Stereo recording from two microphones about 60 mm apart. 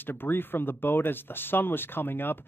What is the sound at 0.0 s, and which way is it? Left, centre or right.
Speech, left.